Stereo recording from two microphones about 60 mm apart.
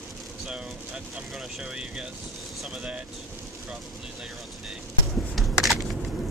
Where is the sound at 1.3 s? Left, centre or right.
Centre.